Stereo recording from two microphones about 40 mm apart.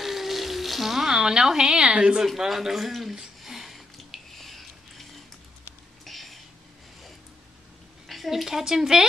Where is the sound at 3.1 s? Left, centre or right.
Centre.